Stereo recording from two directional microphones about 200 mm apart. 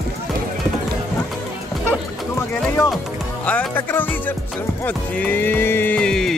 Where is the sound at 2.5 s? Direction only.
5° left (ahead or behind).